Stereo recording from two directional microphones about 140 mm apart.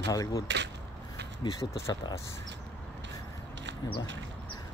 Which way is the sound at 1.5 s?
20° left (ahead or behind).